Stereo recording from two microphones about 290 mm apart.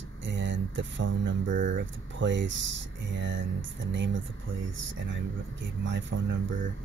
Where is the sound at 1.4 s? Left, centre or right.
Right.